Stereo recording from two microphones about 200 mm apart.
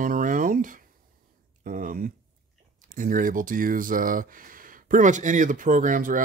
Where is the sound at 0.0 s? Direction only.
45° right (ahead or behind).